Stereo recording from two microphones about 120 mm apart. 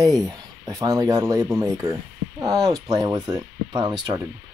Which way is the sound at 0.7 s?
30° right (ahead or behind).